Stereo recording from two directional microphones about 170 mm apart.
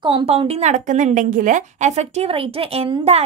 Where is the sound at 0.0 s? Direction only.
30° right (ahead or behind).